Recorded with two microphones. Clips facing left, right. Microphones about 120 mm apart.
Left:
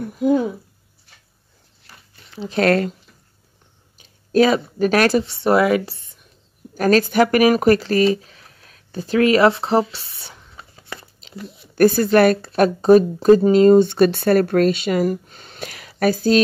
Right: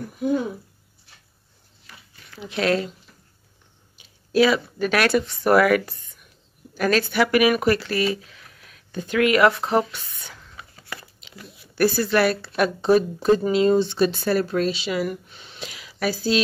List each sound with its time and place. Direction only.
1.9 s a sound: 35° left (ahead or behind)
2.2 s a sound: 25° left (ahead or behind)
2.5 s speech: 50° left (ahead or behind)
4.0 s speech: 40° left (ahead or behind)
6.7 s speech: 40° left (ahead or behind)
10.1 s writing: 25° left (ahead or behind)
11.2 s chewing: 35° left (ahead or behind)
11.7 s speech: 45° left (ahead or behind)